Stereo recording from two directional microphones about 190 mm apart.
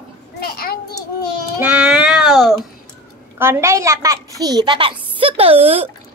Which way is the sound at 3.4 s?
15° right (ahead or behind).